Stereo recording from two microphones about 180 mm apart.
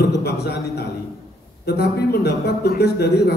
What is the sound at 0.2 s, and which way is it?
A man's voice, 65° left (ahead or behind).